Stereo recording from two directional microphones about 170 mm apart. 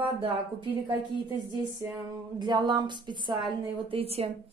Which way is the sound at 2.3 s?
25° right (ahead or behind).